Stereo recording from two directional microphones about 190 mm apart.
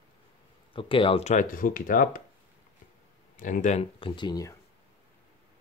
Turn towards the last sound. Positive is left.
turn(degrees=20)  # may be behind; listen again after turning